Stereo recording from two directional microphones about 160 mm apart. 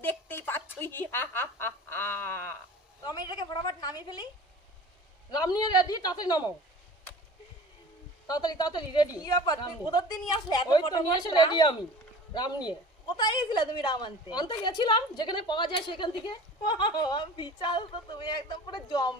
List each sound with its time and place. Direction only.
0.0 s a sound: 10° left (ahead or behind)
3.0 s a woman's voice: 25° left (ahead or behind)
5.4 s a woman's voice: 25° left (ahead or behind)
8.3 s a woman's voice: 25° left (ahead or behind)